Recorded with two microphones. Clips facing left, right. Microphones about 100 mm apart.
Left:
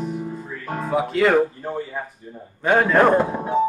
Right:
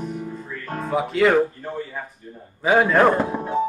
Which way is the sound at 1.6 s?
15° left (ahead or behind).